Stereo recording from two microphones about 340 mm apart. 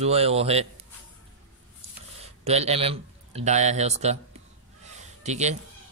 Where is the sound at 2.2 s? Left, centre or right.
Centre.